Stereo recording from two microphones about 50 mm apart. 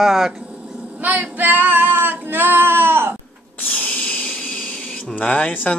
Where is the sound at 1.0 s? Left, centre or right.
Right.